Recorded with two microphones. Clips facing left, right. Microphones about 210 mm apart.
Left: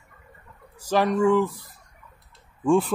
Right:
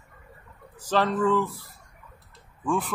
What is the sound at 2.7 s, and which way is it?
Speech, 25° left (ahead or behind).